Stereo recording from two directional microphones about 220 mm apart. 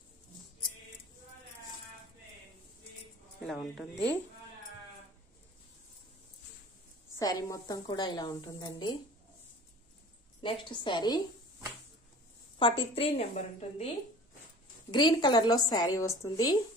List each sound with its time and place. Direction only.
3.3 s speech: centre (ahead or behind)
7.2 s a woman's voice: 15° left (ahead or behind)
10.4 s a woman's voice: 20° left (ahead or behind)
12.5 s a woman's voice: 25° left (ahead or behind)
14.9 s a woman's voice: 20° left (ahead or behind)